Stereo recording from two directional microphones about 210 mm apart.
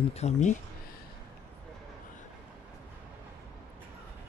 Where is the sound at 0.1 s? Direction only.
30° left (ahead or behind).